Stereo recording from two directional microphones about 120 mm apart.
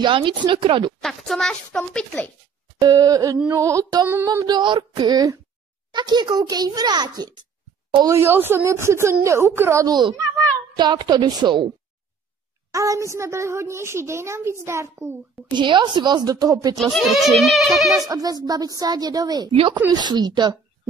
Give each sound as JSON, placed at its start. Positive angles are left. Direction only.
{"t": 0.0, "sound": "speech", "side_deg": -45}
{"t": 1.0, "sound": "speech", "side_deg": 0}
{"t": 2.8, "sound": "a woman's voice", "side_deg": -35}
{"t": 8.1, "sound": "a woman's voice", "side_deg": -20}
{"t": 9.8, "sound": "a woman's voice", "side_deg": -35}
{"t": 12.7, "sound": "a woman's voice", "side_deg": -25}
{"t": 15.5, "sound": "a woman's voice", "side_deg": -40}
{"t": 16.9, "sound": "speech", "side_deg": 0}
{"t": 17.9, "sound": "a woman's voice", "side_deg": -30}